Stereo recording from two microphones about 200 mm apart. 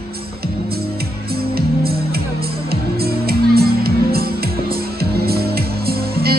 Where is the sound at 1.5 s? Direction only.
50° right (ahead or behind).